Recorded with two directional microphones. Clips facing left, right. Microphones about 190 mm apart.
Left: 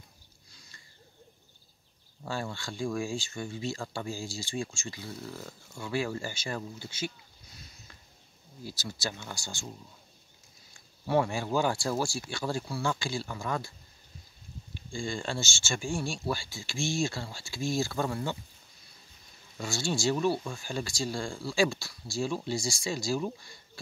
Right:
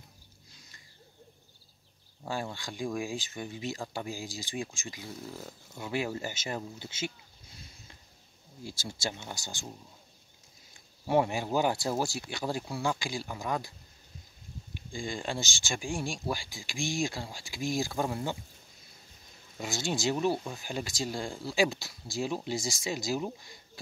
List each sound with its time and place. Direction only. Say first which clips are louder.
2.2 s speech: even; 15° right (ahead or behind)
8.6 s speech: even; 25° right (ahead or behind)
10.7 s speech: even; 20° right (ahead or behind)
19.6 s speech: left 1 dB; 20° right (ahead or behind)